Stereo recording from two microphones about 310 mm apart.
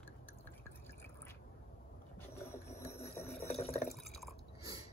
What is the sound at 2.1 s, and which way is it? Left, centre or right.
Boat, centre.